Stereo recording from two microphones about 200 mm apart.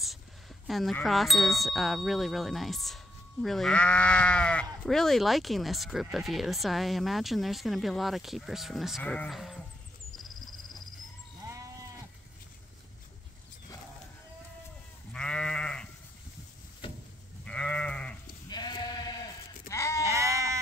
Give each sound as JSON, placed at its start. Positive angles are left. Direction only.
{"t": 0.7, "sound": "speech", "side_deg": 0}
{"t": 11.4, "sound": "goat", "side_deg": -15}
{"t": 15.1, "sound": "livestock", "side_deg": 5}
{"t": 17.5, "sound": "sheep", "side_deg": 5}
{"t": 18.5, "sound": "sheep", "side_deg": 20}
{"t": 19.7, "sound": "bleat", "side_deg": 15}
{"t": 20.1, "sound": "goat", "side_deg": -15}